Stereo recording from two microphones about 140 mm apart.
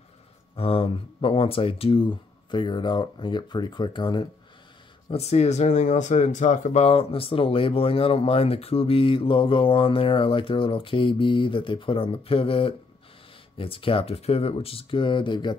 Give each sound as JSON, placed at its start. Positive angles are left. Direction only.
{"t": 0.6, "sound": "speech", "side_deg": 40}
{"t": 5.1, "sound": "speech", "side_deg": 50}